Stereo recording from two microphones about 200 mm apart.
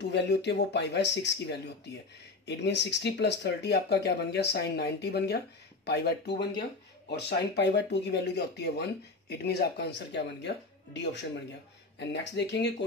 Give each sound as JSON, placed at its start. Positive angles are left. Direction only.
{"t": 0.0, "sound": "speech", "side_deg": 60}